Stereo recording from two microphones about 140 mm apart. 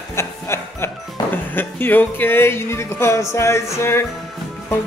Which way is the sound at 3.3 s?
20° left (ahead or behind).